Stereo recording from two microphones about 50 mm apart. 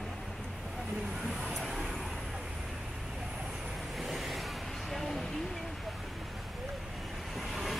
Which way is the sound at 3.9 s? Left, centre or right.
Centre.